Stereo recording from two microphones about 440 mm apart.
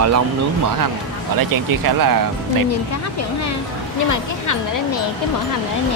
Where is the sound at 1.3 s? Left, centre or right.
Right.